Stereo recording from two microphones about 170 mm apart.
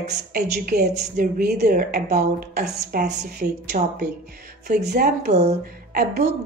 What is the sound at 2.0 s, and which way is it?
Speech, 45° right (ahead or behind).